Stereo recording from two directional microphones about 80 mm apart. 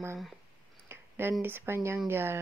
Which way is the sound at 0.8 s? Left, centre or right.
Right.